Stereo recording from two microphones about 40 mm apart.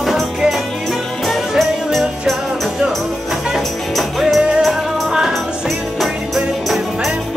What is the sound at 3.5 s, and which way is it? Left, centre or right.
Music, centre.